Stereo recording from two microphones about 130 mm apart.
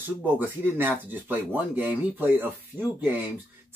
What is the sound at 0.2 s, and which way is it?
Speech, 15° right (ahead or behind).